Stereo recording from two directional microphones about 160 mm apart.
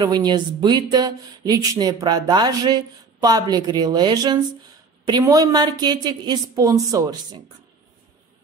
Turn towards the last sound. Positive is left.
turn(degrees=-20)  # may be behind; listen again after turning